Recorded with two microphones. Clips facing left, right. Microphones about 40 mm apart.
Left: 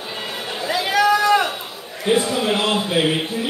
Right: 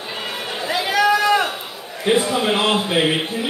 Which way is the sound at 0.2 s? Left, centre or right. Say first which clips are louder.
Right 1 dB; centre.